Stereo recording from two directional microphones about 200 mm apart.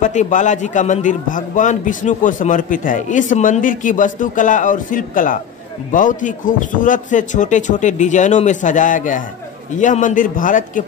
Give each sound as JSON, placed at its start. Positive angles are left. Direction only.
{"t": 0.0, "sound": "a man's voice", "side_deg": 35}